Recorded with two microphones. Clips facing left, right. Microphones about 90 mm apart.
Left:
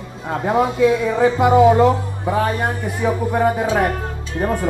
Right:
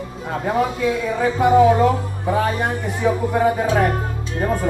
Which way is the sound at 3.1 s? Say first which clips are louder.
Even; 10° left (ahead or behind).